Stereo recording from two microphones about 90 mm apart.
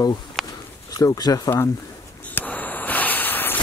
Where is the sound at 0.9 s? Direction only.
45° left (ahead or behind).